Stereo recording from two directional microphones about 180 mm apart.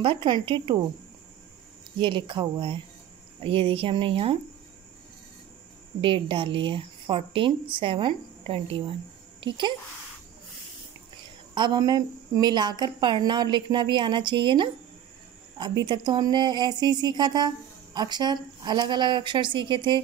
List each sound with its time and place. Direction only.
0.0 s a woman's voice: 30° right (ahead or behind)
2.0 s a woman's voice: 25° right (ahead or behind)
5.9 s a woman's voice: 30° right (ahead or behind)
11.5 s a woman's voice: 25° right (ahead or behind)